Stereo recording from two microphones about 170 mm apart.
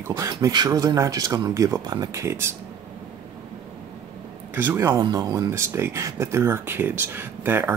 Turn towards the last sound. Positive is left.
turn(degrees=-10)  # may be behind; listen again after turning